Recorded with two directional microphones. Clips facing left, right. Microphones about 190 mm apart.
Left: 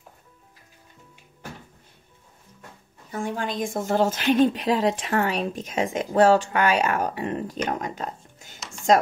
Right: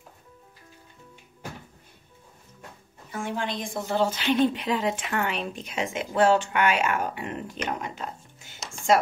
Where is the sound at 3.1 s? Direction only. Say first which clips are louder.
Left 2 dB; 40° left (ahead or behind).